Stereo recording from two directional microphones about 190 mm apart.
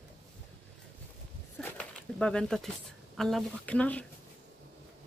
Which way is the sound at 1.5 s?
5° left (ahead or behind).